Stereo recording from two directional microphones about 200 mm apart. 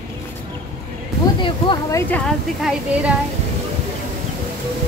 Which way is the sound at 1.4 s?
20° left (ahead or behind).